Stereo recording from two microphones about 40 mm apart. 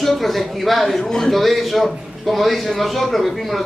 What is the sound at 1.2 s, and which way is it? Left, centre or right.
A man's voice, centre.